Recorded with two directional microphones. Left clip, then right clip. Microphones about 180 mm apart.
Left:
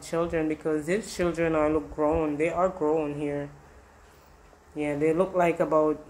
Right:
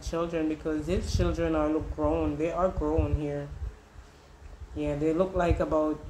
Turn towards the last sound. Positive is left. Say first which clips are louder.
# left 4 dB
turn(degrees=35)  # may be behind; listen again after turning